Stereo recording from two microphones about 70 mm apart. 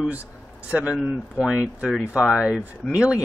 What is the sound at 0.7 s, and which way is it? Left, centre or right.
Speech, centre.